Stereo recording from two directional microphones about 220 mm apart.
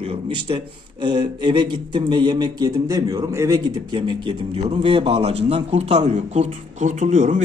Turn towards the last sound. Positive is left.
turn(degrees=-35)  # may be behind; listen again after turning